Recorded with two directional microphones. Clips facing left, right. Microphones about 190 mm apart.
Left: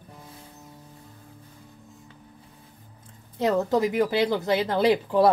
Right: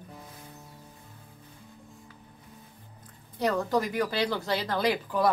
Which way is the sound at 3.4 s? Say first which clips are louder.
Left 4 dB; 20° left (ahead or behind).